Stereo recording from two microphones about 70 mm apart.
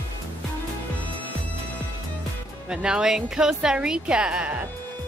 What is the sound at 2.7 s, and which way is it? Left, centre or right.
A woman's voice, centre.